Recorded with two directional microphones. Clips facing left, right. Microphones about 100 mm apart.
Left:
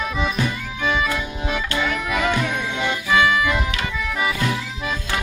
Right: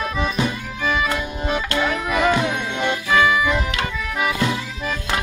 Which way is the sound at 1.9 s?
25° right (ahead or behind).